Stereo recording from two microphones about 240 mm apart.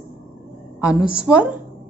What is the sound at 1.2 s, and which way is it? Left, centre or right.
Speech, centre.